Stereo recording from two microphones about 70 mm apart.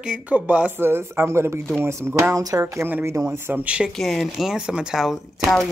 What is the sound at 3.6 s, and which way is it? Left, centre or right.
Speech, centre.